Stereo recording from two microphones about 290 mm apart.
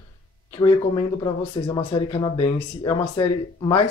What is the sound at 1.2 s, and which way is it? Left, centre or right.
Speech, centre.